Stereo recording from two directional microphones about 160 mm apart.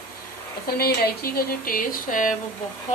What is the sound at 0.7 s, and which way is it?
Speech, 70° left (ahead or behind).